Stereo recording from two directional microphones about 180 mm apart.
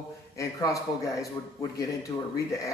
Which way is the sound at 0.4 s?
15° left (ahead or behind).